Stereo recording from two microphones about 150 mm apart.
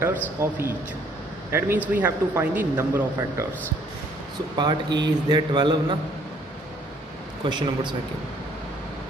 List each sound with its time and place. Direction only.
0.4 s a man's voice: 15° right (ahead or behind)
4.6 s a man's voice: 30° right (ahead or behind)
7.4 s a man's voice: 30° right (ahead or behind)